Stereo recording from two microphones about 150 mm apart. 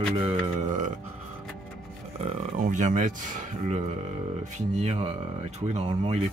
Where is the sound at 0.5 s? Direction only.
55° right (ahead or behind).